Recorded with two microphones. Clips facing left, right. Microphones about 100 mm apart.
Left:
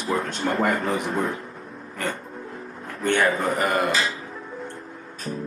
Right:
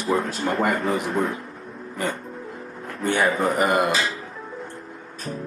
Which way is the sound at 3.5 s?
20° right (ahead or behind).